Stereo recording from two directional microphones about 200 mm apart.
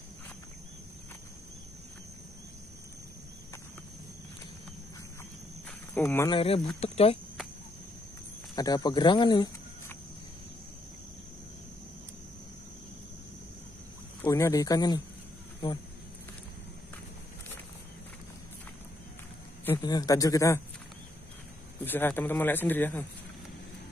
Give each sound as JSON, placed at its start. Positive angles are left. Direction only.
{"t": 5.7, "sound": "cricket", "side_deg": 10}
{"t": 6.3, "sound": "speech", "side_deg": 30}
{"t": 8.5, "sound": "speech", "side_deg": 20}
{"t": 14.2, "sound": "speech", "side_deg": 15}
{"t": 19.6, "sound": "speech", "side_deg": 15}
{"t": 21.8, "sound": "speech", "side_deg": 10}